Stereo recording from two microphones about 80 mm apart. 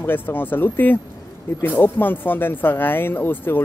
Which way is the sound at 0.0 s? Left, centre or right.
Left.